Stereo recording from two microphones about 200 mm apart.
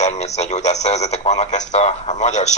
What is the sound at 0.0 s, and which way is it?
Speech, 35° left (ahead or behind).